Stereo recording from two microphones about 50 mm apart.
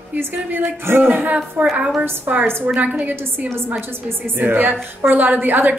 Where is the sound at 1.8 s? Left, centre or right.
Right.